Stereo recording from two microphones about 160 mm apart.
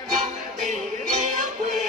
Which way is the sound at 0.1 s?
55° right (ahead or behind).